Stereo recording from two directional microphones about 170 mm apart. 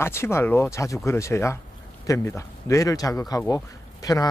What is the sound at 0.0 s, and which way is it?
Speech, 15° left (ahead or behind).